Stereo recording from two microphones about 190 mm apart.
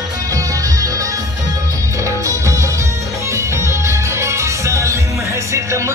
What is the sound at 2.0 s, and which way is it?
Music, 15° right (ahead or behind).